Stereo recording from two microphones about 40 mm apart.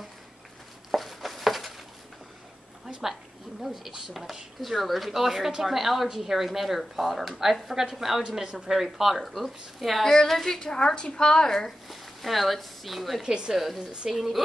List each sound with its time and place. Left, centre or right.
0.9 s a sound: centre
2.9 s a sound: centre
4.1 s a woman's voice: centre
11.9 s speech: centre
13.2 s a woman's voice: right
13.5 s speech: centre